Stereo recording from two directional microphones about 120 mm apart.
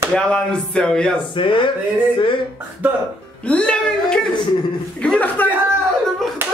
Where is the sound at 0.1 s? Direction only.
5° left (ahead or behind).